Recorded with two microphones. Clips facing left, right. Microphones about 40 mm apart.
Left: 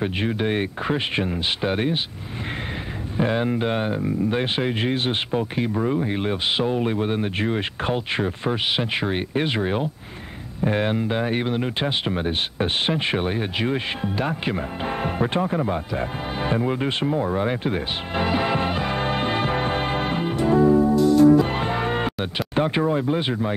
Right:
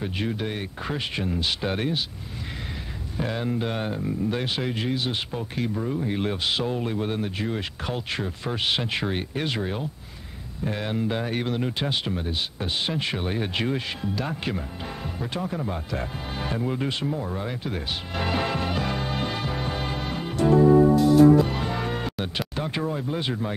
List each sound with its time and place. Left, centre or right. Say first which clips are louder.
0.0 s speech: left 5 dB; left
1.6 s speech: left 4 dB; centre
3.2 s speech: left 6 dB; left
12.1 s speech: left 5 dB; left
12.9 s speech: left 5 dB; left
13.3 s speech: left 2 dB; centre
13.7 s speech: left 4 dB; left
14.8 s speech: left 9 dB; left
18.2 s speech: left 4 dB; centre
18.6 s music: left 3 dB; left
18.9 s music: left 6 dB; left
20.9 s music: left 1 dB; centre
21.5 s music: left 4 dB; left
22.6 s speech: left 9 dB; left